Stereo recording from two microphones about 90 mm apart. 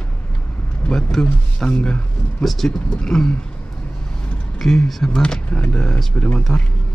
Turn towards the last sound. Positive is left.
turn(degrees=10)  # may be behind; listen again after turning